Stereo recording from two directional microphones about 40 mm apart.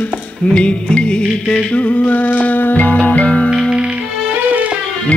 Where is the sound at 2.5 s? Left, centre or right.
Left.